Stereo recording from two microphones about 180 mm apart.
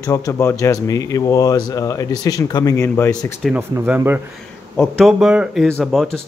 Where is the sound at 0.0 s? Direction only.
20° left (ahead or behind).